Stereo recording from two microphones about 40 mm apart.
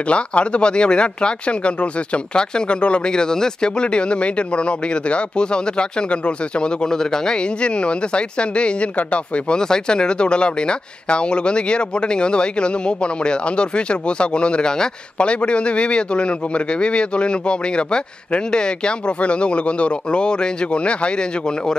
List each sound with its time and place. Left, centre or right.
0.1 s speech: left
9.6 s speech: centre